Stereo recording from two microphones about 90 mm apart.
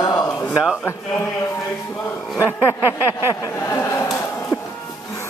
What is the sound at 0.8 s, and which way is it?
Speech, 30° left (ahead or behind).